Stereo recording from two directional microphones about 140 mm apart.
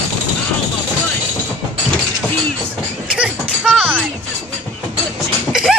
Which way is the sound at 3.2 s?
5° right (ahead or behind).